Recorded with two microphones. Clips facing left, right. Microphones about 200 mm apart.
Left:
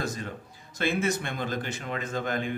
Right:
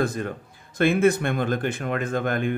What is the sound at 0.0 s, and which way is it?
Speech, 55° right (ahead or behind).